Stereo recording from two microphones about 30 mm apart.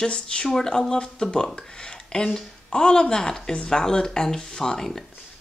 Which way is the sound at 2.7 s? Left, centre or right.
Left.